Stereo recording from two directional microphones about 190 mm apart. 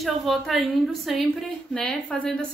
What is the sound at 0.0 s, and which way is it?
A woman's voice, centre (ahead or behind).